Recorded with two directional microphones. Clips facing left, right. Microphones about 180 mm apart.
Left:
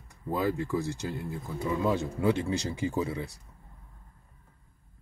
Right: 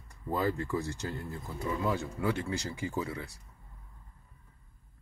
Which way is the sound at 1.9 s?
20° left (ahead or behind).